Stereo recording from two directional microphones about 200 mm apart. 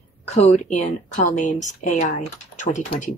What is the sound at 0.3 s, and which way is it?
Speech, 35° left (ahead or behind).